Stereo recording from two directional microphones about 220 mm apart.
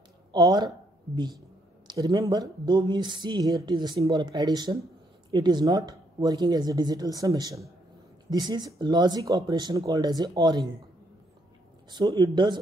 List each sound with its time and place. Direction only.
0.3 s speech: 20° right (ahead or behind)
11.9 s speech: 20° right (ahead or behind)